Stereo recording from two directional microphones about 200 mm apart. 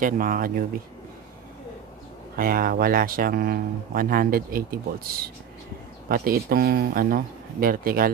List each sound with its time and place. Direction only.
0.0 s speech: 45° right (ahead or behind)
2.3 s speech: 45° right (ahead or behind)